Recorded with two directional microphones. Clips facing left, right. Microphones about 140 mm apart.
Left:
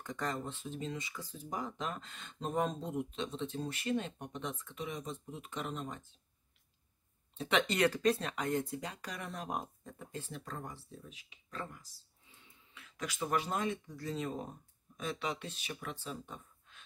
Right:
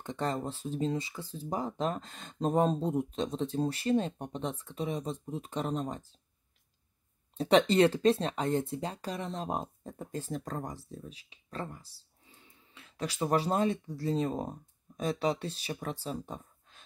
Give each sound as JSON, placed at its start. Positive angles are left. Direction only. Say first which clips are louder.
{"t": 0.0, "sound": "speech", "louder": "right 5 dB", "side_deg": -30}
{"t": 7.3, "sound": "speech", "louder": "right 8 dB", "side_deg": -35}
{"t": 9.9, "sound": "speech", "louder": "right 8 dB", "side_deg": -40}